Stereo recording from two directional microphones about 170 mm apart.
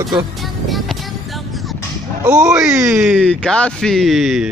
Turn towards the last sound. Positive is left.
turn(degrees=0)  # may be behind; listen again after turning